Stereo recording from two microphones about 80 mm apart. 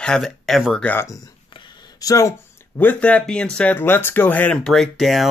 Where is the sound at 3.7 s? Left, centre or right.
Left.